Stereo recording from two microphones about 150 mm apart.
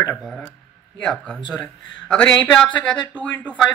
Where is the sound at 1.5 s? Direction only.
5° left (ahead or behind).